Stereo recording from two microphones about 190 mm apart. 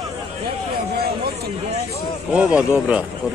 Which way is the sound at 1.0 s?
55° right (ahead or behind).